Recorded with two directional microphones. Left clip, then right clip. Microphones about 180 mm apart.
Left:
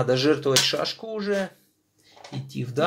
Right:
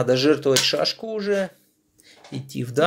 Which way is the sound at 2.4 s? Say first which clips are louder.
Right 4 dB; 40° right (ahead or behind).